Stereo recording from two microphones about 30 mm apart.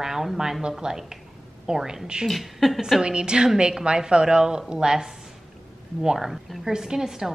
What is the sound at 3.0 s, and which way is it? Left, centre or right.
Speech, right.